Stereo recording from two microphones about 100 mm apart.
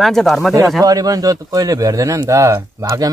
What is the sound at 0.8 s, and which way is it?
A man's voice, 40° right (ahead or behind).